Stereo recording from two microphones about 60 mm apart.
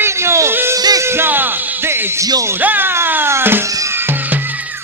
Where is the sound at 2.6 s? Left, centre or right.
Right.